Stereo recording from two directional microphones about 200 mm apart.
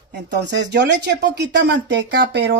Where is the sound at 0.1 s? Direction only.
60° right (ahead or behind).